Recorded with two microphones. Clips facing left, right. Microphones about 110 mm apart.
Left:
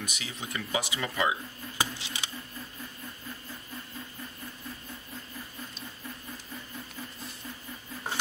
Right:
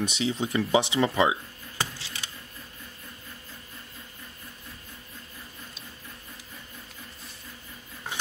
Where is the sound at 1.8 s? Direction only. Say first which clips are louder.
Left 1 dB; 15° left (ahead or behind).